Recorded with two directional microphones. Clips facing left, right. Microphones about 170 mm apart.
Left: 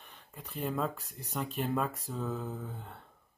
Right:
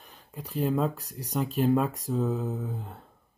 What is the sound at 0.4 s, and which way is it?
Speech, 35° right (ahead or behind).